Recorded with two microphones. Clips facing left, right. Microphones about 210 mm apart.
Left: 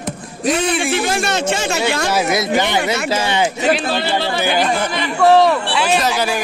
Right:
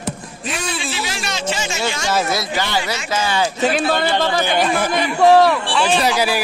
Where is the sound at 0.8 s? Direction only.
50° left (ahead or behind).